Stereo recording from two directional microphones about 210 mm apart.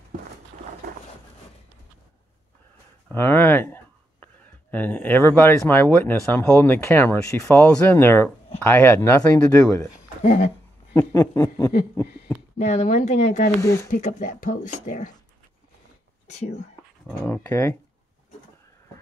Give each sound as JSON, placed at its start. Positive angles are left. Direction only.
{"t": 3.1, "sound": "speech", "side_deg": 10}
{"t": 11.0, "sound": "speech", "side_deg": 10}
{"t": 12.5, "sound": "speech", "side_deg": 35}
{"t": 13.6, "sound": "speech", "side_deg": 15}
{"t": 13.8, "sound": "speech", "side_deg": 40}
{"t": 16.3, "sound": "speech", "side_deg": 35}
{"t": 17.2, "sound": "speech", "side_deg": 10}